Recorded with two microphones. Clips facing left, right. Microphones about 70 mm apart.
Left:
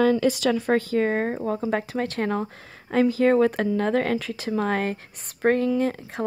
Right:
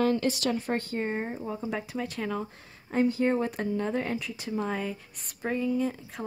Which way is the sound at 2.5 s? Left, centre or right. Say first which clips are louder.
Left 6 dB; left.